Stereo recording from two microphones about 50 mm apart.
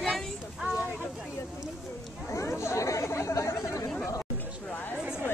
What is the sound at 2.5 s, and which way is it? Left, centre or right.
Chatter, left.